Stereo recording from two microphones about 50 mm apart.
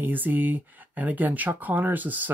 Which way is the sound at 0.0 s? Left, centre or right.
Right.